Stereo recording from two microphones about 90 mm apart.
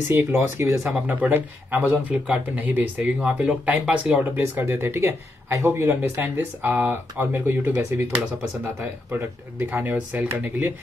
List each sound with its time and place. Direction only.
0.1 s speech: 25° right (ahead or behind)
8.8 s speech: 25° right (ahead or behind)